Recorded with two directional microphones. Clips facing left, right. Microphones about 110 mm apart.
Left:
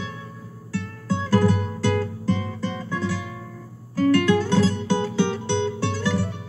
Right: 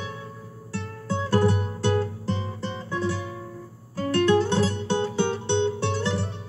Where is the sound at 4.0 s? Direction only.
25° right (ahead or behind).